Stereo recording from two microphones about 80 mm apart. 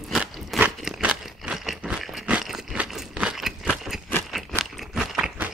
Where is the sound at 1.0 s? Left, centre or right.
Centre.